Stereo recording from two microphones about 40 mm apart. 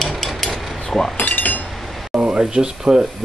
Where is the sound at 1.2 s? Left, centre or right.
Left.